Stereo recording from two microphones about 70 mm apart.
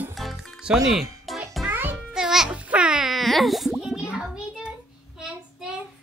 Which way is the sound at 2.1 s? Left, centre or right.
Centre.